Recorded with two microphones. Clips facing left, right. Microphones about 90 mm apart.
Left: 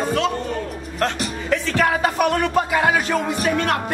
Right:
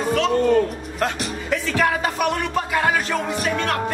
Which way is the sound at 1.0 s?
5° right (ahead or behind).